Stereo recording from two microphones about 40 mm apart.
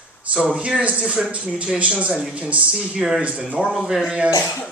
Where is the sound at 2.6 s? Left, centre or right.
Centre.